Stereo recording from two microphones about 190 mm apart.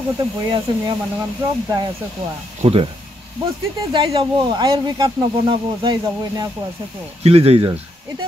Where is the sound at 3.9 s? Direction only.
25° right (ahead or behind).